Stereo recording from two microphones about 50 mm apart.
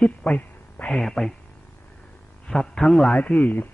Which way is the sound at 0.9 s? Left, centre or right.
Centre.